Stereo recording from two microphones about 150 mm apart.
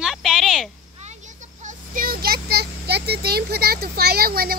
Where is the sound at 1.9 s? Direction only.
75° right (ahead or behind).